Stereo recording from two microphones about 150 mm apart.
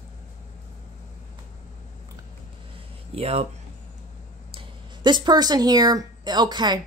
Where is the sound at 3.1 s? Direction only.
45° right (ahead or behind).